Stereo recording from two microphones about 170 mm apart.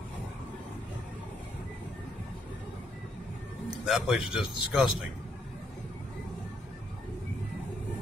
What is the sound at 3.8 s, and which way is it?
Speech, 5° right (ahead or behind).